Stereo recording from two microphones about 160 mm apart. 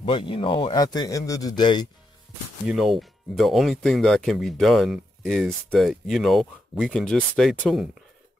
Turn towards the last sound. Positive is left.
turn(degrees=0)  # may be behind; listen again after turning